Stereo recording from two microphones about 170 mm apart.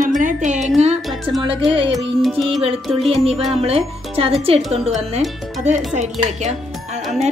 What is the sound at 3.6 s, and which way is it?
A woman's voice, 35° right (ahead or behind).